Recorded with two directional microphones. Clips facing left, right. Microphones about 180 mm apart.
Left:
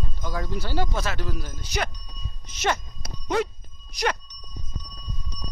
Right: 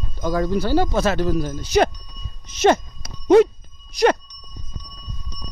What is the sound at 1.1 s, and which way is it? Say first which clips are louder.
Speech: right 11 dB; 30° right (ahead or behind).